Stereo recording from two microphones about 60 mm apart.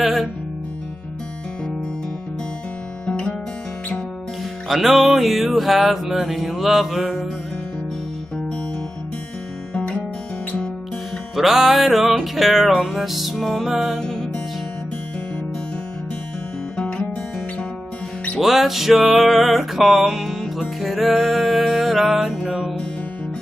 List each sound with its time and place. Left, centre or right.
0.0 s music: centre
3.1 s guitar: centre
4.6 s music: centre
11.3 s music: centre
13.9 s music: centre
16.7 s music: centre
18.4 s music: centre